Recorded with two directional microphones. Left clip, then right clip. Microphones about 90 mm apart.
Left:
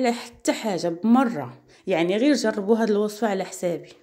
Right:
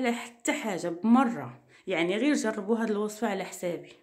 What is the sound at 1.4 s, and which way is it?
A woman's voice, 30° left (ahead or behind).